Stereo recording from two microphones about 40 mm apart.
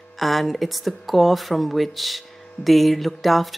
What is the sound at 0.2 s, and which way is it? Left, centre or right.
Speech, centre.